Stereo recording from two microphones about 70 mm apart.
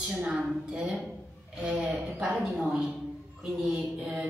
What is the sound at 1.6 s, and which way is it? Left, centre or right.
A woman's voice, centre.